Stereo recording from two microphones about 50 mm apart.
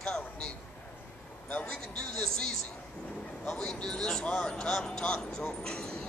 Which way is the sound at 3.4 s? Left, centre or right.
Centre.